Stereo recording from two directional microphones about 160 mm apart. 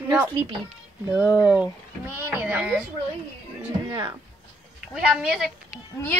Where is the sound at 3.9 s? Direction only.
20° right (ahead or behind).